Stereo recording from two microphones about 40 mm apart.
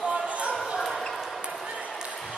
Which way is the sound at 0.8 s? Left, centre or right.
Centre.